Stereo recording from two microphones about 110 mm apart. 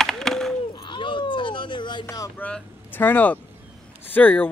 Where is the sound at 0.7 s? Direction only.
50° left (ahead or behind).